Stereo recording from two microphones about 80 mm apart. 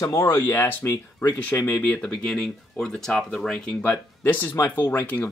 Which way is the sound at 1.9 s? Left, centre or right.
Centre.